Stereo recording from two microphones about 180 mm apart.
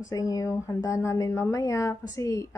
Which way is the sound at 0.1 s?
20° left (ahead or behind).